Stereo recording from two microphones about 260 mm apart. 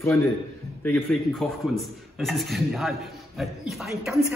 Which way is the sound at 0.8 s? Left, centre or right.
Centre.